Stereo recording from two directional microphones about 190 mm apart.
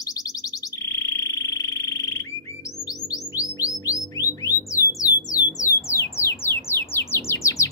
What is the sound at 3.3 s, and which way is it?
Music, 15° left (ahead or behind).